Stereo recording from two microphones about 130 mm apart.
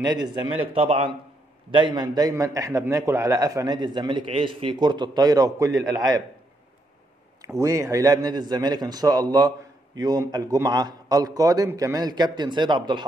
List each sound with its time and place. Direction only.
0.0 s a man's voice: 35° right (ahead or behind)
1.7 s a man's voice: 35° right (ahead or behind)
7.4 s a man's voice: 25° right (ahead or behind)